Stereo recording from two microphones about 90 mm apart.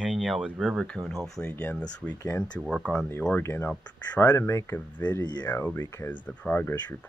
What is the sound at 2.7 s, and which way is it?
Speech, 5° left (ahead or behind).